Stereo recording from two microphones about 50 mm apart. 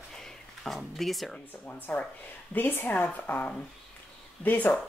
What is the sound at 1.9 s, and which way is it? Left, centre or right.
Speech, left.